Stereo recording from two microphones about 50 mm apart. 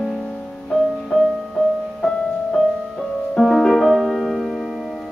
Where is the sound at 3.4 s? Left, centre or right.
Centre.